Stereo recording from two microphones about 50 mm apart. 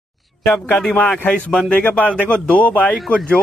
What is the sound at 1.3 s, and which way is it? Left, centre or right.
Speech, centre.